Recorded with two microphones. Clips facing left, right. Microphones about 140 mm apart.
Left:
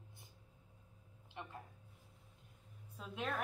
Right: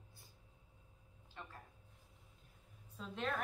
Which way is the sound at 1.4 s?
20° left (ahead or behind).